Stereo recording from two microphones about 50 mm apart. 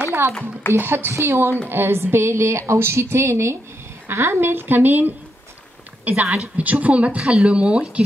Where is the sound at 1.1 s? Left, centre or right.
Right.